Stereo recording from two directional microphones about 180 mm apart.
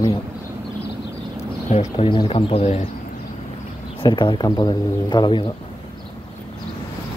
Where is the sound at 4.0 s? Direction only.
25° left (ahead or behind).